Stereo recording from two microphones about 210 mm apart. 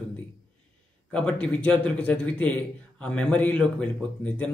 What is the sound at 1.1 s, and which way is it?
A man's voice, 5° left (ahead or behind).